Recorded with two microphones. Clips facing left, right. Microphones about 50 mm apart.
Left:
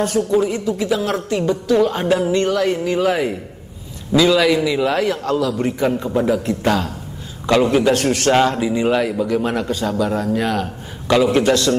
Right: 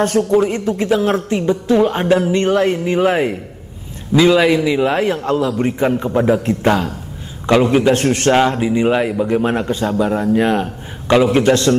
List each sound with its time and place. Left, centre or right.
0.0 s a man's voice: right
8.3 s a man's voice: centre